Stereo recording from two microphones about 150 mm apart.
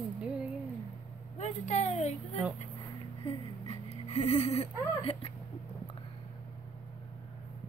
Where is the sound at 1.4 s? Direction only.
50° left (ahead or behind).